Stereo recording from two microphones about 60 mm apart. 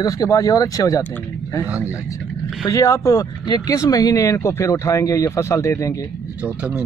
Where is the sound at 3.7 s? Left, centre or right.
Left.